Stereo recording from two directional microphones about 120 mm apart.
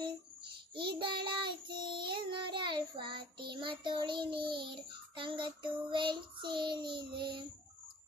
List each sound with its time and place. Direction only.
0.7 s child singing: 45° right (ahead or behind)